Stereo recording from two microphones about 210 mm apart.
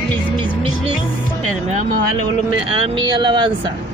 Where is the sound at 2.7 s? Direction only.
25° right (ahead or behind).